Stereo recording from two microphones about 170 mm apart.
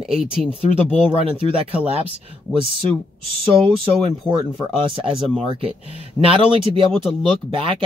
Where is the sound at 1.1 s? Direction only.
35° right (ahead or behind).